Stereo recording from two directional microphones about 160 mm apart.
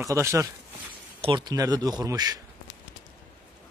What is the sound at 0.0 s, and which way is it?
Speech, 20° right (ahead or behind).